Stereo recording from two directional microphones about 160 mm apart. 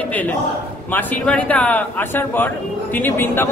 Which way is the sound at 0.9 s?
10° left (ahead or behind).